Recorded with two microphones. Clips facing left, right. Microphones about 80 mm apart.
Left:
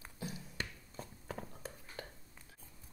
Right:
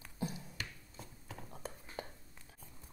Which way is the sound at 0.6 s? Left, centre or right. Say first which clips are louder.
Left 3 dB; left.